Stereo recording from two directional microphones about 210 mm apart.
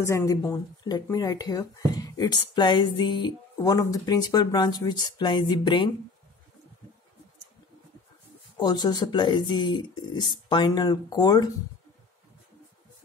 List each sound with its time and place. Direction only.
0.0 s speech: 15° left (ahead or behind)
8.5 s speech: 20° left (ahead or behind)